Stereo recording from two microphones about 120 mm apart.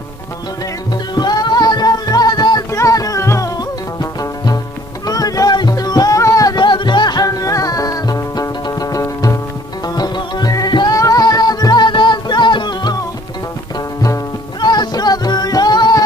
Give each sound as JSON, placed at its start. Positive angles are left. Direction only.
{"t": 1.1, "sound": "music", "side_deg": 35}
{"t": 14.0, "sound": "music", "side_deg": 30}